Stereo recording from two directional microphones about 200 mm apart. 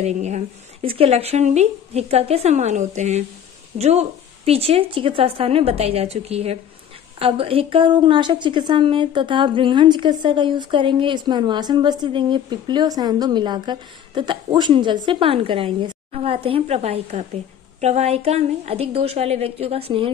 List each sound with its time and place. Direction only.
0.0 s a woman's voice: 35° right (ahead or behind)